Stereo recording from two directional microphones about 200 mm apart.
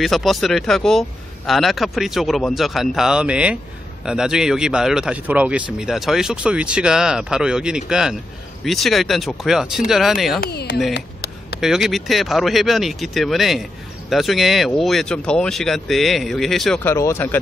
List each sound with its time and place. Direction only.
0.0 s speech: centre (ahead or behind)
10.4 s speech: 55° left (ahead or behind)
10.9 s a sound: 55° left (ahead or behind)
11.6 s speech: centre (ahead or behind)